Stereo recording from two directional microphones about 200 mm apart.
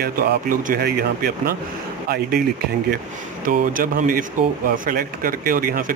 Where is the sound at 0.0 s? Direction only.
45° right (ahead or behind).